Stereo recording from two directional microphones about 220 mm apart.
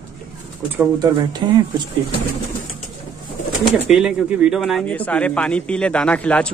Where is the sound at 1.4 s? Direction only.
20° right (ahead or behind).